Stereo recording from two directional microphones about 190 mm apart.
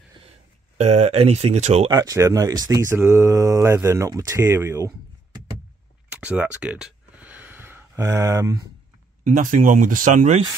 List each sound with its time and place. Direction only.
0.7 s speech: 35° right (ahead or behind)
1.9 s speech: 15° right (ahead or behind)
6.0 s a sound: 10° right (ahead or behind)
9.2 s speech: 45° right (ahead or behind)